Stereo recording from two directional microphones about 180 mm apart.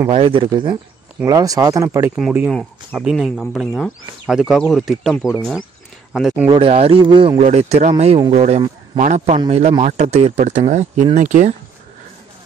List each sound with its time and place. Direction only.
0.1 s speech: 30° right (ahead or behind)
1.2 s speech: 20° right (ahead or behind)
2.1 s speech: 5° right (ahead or behind)
5.1 s speech: 15° left (ahead or behind)
6.1 s speech: 5° right (ahead or behind)
6.5 s speech: 30° right (ahead or behind)